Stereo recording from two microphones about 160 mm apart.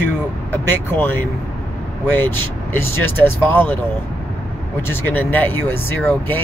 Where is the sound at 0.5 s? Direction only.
15° left (ahead or behind).